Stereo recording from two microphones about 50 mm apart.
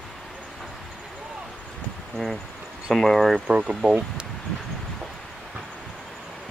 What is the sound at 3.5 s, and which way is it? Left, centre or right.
Speech, right.